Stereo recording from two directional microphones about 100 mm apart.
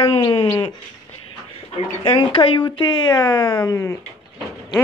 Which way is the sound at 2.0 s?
60° left (ahead or behind).